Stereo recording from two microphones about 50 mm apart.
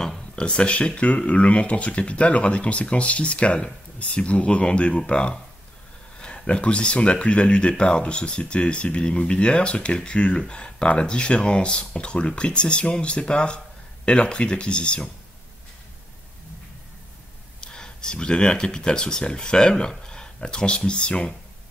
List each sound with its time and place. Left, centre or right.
0.0 s speech: centre
17.6 s speech: centre